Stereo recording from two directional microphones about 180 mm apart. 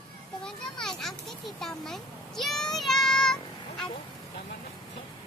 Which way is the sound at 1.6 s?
Centre (ahead or behind).